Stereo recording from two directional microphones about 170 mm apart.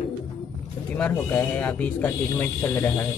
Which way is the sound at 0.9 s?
10° left (ahead or behind).